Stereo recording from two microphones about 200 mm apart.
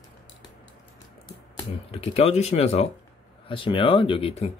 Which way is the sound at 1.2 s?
20° left (ahead or behind).